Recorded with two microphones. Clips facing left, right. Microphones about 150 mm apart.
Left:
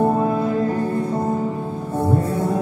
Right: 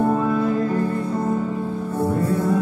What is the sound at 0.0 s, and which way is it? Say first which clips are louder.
Music: left 1 dB; 30° left (ahead or behind).